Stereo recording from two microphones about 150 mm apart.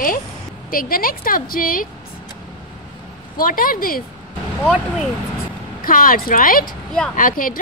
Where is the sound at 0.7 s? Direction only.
75° left (ahead or behind).